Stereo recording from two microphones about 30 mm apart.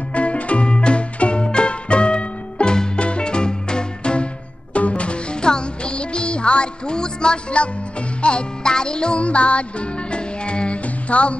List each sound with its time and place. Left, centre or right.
0.1 s music: left
7.5 s music: left
9.2 s music: left
11.1 s speech: left